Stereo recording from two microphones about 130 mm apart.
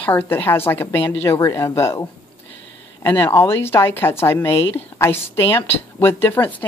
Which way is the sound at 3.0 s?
20° left (ahead or behind).